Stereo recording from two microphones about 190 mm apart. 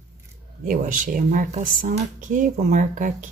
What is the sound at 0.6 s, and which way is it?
Speech, 45° right (ahead or behind).